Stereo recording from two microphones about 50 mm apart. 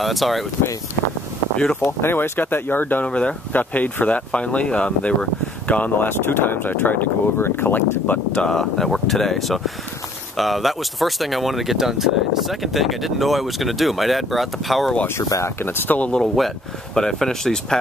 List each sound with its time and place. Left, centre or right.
0.0 s speech: centre
1.8 s speech: left
3.1 s speech: left
3.5 s speech: left
6.0 s speech: left
7.3 s speech: left
8.4 s speech: centre
15.1 s speech: left
15.6 s speech: left
16.2 s speech: centre